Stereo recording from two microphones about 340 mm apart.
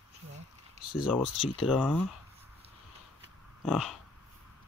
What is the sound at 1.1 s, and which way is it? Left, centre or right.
Speech, centre.